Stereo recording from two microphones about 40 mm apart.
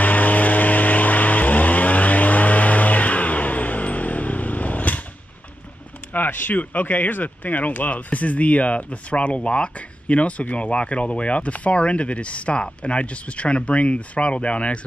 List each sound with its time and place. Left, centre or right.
0.0 s vehicle: left
6.1 s speech: left